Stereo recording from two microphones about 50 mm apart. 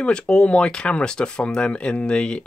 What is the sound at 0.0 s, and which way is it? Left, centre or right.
Speech, centre.